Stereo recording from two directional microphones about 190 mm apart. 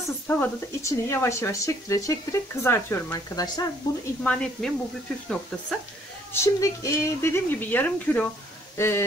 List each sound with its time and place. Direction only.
0.3 s speech: 15° left (ahead or behind)
4.2 s a woman's voice: 5° left (ahead or behind)
6.3 s speech: 15° left (ahead or behind)